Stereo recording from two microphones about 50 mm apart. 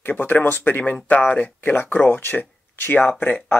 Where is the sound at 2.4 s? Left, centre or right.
Left.